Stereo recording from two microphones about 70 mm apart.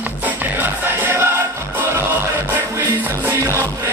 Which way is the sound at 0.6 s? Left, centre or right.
Right.